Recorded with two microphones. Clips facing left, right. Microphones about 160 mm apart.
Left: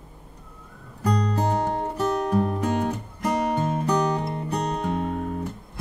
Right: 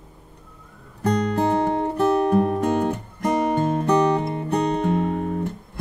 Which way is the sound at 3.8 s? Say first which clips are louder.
Right 6 dB; centre (ahead or behind).